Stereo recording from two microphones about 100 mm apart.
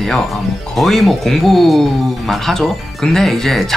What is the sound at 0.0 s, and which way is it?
Speech, centre (ahead or behind).